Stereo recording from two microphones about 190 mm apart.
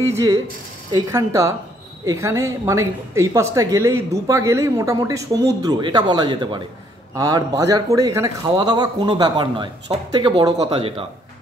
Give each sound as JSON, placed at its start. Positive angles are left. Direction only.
{"t": 0.1, "sound": "speech", "side_deg": -15}